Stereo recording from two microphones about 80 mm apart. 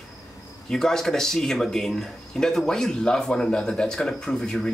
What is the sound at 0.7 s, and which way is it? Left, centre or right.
Speech, centre.